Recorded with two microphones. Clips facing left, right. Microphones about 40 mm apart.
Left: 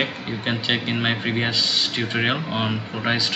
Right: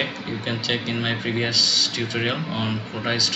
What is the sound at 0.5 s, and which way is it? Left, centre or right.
Speech, left.